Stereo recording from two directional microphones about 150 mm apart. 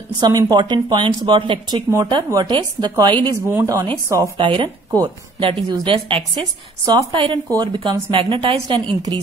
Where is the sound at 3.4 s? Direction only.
20° right (ahead or behind).